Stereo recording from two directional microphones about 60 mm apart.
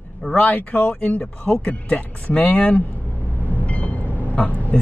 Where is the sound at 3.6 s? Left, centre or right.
Left.